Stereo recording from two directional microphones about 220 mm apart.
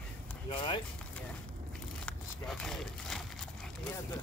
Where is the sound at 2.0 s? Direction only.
5° left (ahead or behind).